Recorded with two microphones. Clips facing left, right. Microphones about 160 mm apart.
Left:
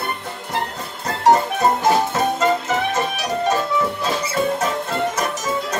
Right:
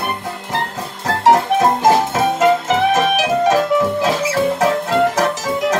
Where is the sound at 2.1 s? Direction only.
90° right.